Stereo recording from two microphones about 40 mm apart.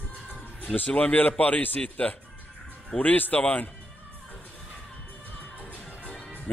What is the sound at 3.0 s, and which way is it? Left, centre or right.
Speech, left.